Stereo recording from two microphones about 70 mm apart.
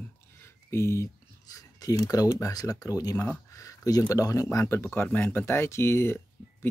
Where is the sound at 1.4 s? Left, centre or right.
Left.